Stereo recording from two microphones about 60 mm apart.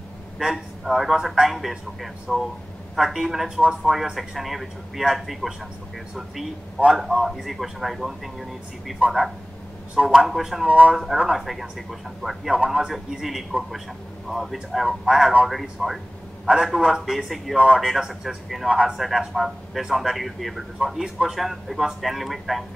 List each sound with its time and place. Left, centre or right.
0.4 s a man's voice: centre
6.9 s a man's voice: centre
9.9 s a man's voice: centre
10.7 s a man's voice: right
11.3 s a man's voice: centre